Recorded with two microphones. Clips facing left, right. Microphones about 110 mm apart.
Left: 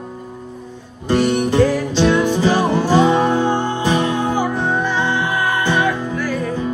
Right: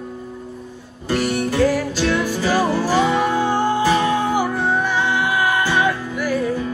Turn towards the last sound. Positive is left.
turn(degrees=-10)  # may be behind; listen again after turning